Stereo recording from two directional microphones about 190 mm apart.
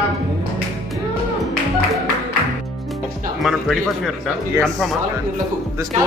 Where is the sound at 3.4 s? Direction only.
Centre (ahead or behind).